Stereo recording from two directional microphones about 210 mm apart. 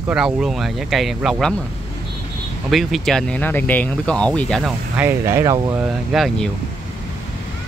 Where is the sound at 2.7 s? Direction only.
Centre (ahead or behind); by 5.8 s 15° right (ahead or behind).